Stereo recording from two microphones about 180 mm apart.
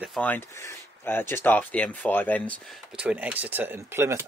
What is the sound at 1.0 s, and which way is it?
Speech, 10° left (ahead or behind).